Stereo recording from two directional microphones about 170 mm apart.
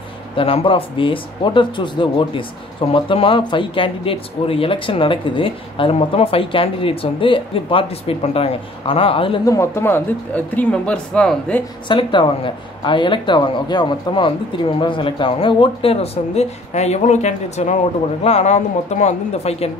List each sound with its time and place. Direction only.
0.4 s speech: 35° left (ahead or behind)
9.5 s speech: 15° left (ahead or behind)
11.9 s speech: 30° left (ahead or behind)